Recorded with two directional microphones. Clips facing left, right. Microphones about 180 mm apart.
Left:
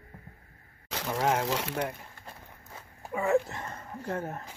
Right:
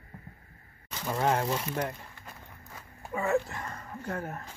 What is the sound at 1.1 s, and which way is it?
Speech, 5° left (ahead or behind).